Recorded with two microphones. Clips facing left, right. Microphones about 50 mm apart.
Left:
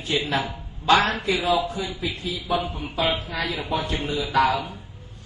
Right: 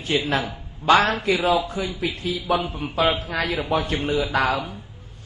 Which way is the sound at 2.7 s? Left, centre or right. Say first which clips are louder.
Right 3 dB; right.